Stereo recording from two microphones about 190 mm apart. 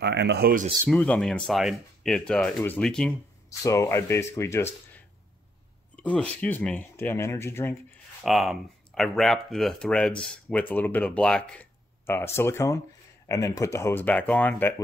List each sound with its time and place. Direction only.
0.0 s speech: 60° right (ahead or behind)
0.8 s speech: 5° left (ahead or behind)
3.4 s speech: 15° left (ahead or behind)
6.4 s speech: 10° left (ahead or behind)
8.2 s speech: centre (ahead or behind)